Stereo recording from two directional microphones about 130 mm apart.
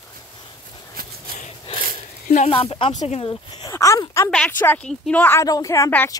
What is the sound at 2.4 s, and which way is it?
Speech, 45° left (ahead or behind).